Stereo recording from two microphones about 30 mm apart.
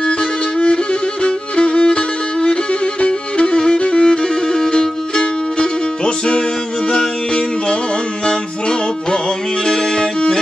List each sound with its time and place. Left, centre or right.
1.2 s music: left
9.7 s violin: left